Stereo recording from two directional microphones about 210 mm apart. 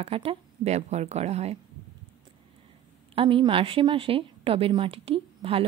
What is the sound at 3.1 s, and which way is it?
A woman's voice, 25° right (ahead or behind).